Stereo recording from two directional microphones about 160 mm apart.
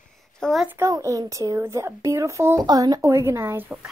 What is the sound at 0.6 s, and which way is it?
A woman's voice, 15° right (ahead or behind).